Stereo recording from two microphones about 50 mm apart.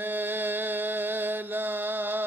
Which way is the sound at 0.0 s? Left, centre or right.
Right.